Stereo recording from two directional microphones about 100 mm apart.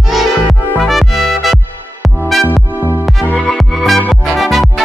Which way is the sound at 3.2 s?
15° right (ahead or behind).